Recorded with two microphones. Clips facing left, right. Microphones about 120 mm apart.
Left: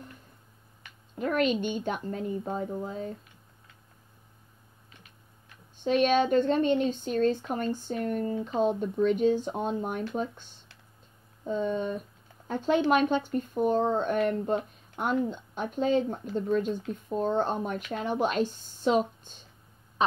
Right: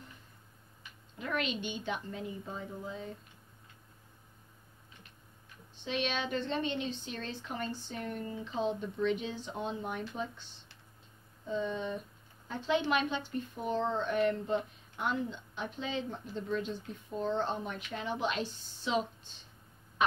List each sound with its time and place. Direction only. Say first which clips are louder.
1.1 s speech: left 9 dB; 45° left (ahead or behind)
5.9 s speech: left 11 dB; 45° left (ahead or behind)
20.0 s quack: left 3 dB; 30° left (ahead or behind)